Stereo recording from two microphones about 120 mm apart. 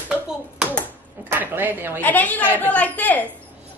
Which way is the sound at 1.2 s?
15° right (ahead or behind).